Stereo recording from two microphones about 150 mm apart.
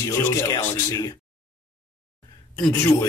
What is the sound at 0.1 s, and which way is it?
Speech, 20° left (ahead or behind).